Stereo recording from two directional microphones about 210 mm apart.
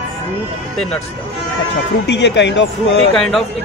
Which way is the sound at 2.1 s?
55° left (ahead or behind).